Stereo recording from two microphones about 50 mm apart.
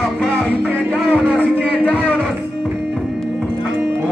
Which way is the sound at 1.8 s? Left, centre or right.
Left.